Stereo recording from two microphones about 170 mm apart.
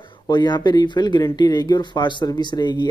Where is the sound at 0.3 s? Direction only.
25° left (ahead or behind).